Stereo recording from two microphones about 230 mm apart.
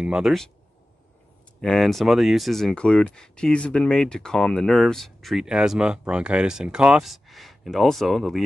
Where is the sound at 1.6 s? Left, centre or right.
Centre.